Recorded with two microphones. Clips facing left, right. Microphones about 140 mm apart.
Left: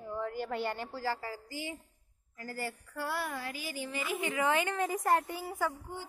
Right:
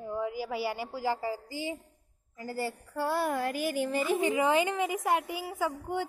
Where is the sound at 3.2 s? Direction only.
50° right (ahead or behind).